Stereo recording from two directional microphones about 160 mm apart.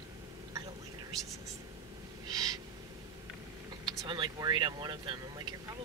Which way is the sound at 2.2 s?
25° right (ahead or behind).